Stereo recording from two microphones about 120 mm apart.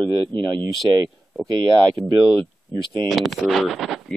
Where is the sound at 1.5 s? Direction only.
40° right (ahead or behind).